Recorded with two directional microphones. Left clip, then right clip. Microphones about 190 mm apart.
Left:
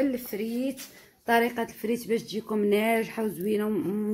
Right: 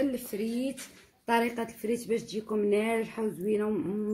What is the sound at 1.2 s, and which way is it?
Speech, 35° left (ahead or behind).